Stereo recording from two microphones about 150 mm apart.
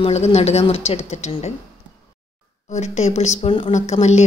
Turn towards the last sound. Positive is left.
turn(degrees=50)  # may be behind; listen again after turning